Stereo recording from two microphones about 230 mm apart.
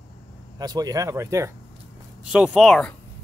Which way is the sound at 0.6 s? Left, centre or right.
Centre.